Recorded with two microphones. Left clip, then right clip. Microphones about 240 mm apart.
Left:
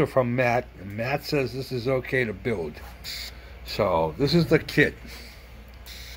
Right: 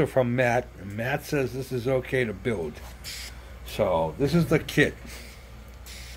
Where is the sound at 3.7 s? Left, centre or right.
Centre.